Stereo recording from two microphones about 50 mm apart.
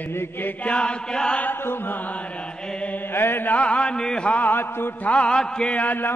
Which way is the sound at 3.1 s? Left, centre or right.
Left.